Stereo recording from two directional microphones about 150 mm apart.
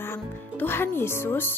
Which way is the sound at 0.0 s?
15° left (ahead or behind).